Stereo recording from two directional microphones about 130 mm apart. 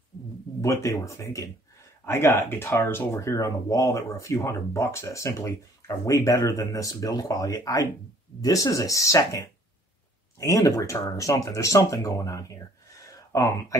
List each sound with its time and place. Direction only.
0.6 s speech: 25° left (ahead or behind)
10.4 s speech: 25° left (ahead or behind)